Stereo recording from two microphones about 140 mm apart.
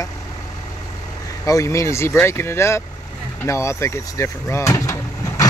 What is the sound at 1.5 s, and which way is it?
Speech, 25° left (ahead or behind).